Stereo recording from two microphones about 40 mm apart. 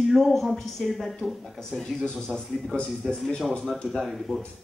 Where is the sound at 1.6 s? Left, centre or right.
Centre.